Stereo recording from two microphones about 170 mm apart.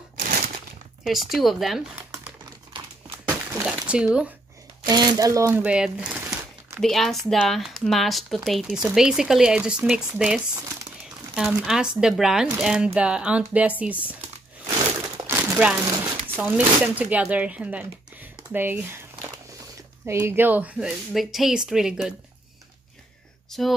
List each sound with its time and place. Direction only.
1.0 s speech: centre (ahead or behind)
3.3 s a sound: 15° right (ahead or behind)
4.8 s speech: 25° right (ahead or behind)
5.7 s speech: 5° right (ahead or behind)
15.2 s crumpling: 10° right (ahead or behind)
16.3 s speech: 5° right (ahead or behind)
20.1 s speech: 15° right (ahead or behind)
23.5 s speech: centre (ahead or behind)